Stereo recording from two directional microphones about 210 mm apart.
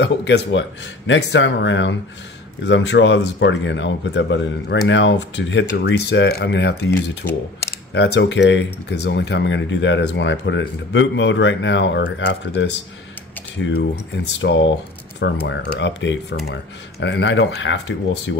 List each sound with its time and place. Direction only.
0.0 s speech: 55° left (ahead or behind)
6.9 s speech: 15° left (ahead or behind)
7.9 s speech: 55° left (ahead or behind)